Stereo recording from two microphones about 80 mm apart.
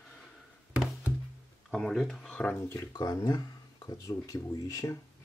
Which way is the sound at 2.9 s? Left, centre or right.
Left.